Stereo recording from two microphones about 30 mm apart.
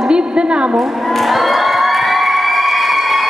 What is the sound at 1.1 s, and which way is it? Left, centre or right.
Crowd, centre.